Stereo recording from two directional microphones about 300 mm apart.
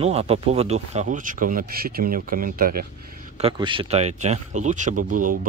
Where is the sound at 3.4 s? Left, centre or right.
Centre.